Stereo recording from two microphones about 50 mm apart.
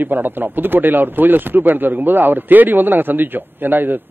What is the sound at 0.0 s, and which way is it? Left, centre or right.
Speech, right.